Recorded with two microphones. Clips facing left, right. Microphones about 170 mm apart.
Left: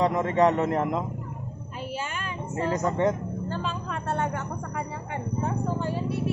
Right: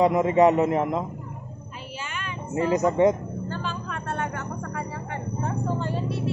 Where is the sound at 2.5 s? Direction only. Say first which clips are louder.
Right 5 dB; 10° right (ahead or behind).